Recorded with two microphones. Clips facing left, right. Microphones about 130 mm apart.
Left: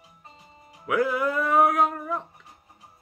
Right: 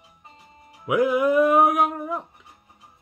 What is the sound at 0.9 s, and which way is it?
Music, 15° right (ahead or behind).